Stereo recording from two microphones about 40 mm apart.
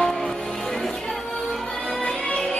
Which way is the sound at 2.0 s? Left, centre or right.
Left.